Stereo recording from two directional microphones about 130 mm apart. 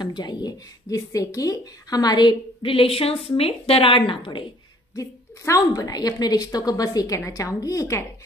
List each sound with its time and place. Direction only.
0.0 s speech: 35° left (ahead or behind)
4.9 s a woman's voice: 25° left (ahead or behind)